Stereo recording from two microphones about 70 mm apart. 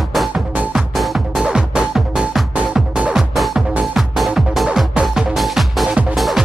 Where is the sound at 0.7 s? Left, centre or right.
Centre.